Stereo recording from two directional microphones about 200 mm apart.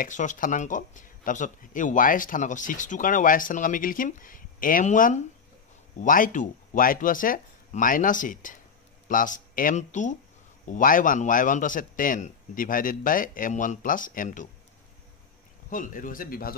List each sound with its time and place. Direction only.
0.0 s speech: 40° left (ahead or behind)
15.7 s speech: 40° left (ahead or behind)